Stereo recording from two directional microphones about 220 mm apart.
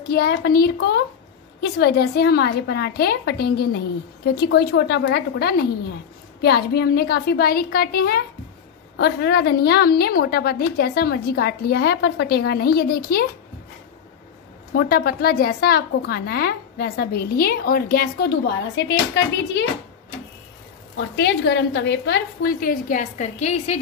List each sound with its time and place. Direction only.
0.1 s a woman's voice: 50° left (ahead or behind)
14.7 s a woman's voice: 45° left (ahead or behind)
20.9 s a woman's voice: 55° left (ahead or behind); by 23.8 s 30° left (ahead or behind)